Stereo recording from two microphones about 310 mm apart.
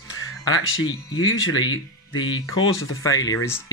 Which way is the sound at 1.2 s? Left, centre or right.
Left.